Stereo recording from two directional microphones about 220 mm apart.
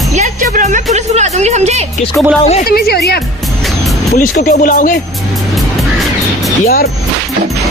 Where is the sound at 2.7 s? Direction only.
45° left (ahead or behind).